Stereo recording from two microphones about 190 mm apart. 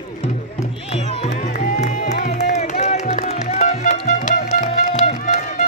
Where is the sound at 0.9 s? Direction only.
35° left (ahead or behind).